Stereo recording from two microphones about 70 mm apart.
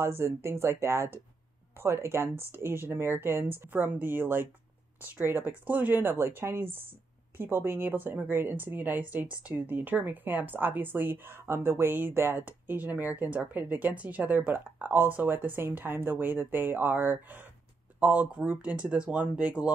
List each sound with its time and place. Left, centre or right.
0.0 s speech: right; by 19.7 s centre